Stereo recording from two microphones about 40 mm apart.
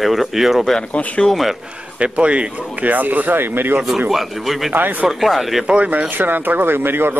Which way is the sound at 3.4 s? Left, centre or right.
Right.